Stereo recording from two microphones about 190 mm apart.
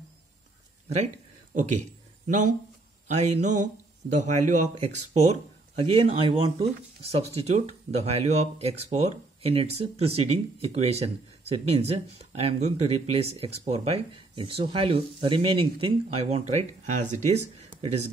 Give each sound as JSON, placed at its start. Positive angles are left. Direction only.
{"t": 2.2, "sound": "speech", "side_deg": -40}